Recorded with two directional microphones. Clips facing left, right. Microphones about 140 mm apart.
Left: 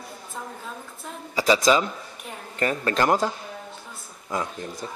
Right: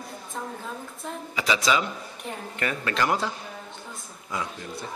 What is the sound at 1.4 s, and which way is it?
A man's voice, 40° left (ahead or behind).